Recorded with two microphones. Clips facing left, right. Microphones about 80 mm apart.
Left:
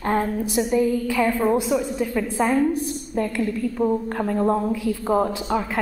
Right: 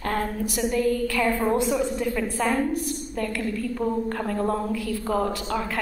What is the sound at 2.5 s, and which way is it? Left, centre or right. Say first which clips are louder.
A woman's voice: left 4 dB; left.